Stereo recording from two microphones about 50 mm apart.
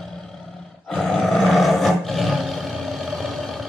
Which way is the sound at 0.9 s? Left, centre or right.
Centre.